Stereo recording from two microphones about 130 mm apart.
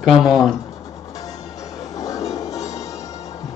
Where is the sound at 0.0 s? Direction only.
5° right (ahead or behind).